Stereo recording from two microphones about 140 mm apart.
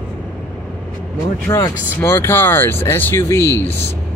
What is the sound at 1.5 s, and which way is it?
Speech, 25° left (ahead or behind).